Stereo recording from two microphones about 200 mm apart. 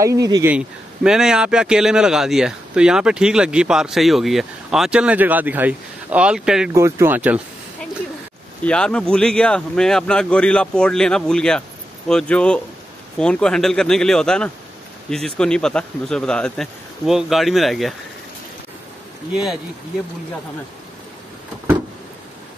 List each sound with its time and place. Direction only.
0.0 s speech: 15° right (ahead or behind)
6.7 s speech: 15° right (ahead or behind)
8.6 s speech: 5° left (ahead or behind)
19.3 s speech: centre (ahead or behind)